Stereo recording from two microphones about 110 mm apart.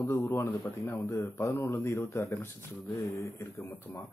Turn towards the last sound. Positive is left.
turn(degrees=25)  # may be behind; listen again after turning